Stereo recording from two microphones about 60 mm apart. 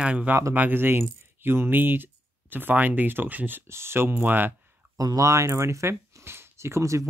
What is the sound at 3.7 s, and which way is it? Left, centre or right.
Speech, right.